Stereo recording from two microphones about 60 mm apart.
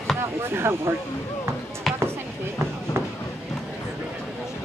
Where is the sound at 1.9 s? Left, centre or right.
Centre.